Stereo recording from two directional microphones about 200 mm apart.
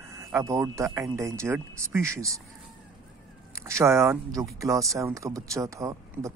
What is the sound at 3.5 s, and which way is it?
Speech, 15° right (ahead or behind).